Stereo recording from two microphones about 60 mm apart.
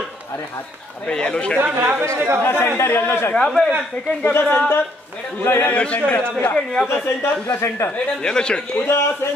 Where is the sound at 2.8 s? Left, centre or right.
Left.